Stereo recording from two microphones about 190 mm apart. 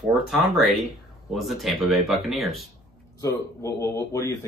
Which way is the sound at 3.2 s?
15° left (ahead or behind).